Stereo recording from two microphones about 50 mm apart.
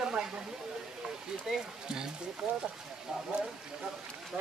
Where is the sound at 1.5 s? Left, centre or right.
Centre.